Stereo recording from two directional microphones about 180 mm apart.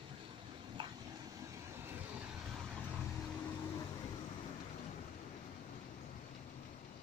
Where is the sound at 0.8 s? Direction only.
25° right (ahead or behind).